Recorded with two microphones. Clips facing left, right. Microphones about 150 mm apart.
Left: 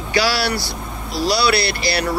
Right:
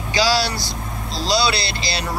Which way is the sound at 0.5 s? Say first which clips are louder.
Left 3 dB; 65° left (ahead or behind).